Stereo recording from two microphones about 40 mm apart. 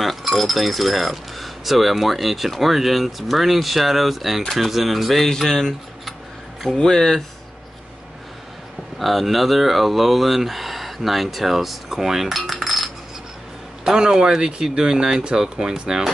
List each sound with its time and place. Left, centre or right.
0.0 s speech: centre
8.9 s speech: centre
13.8 s speech: centre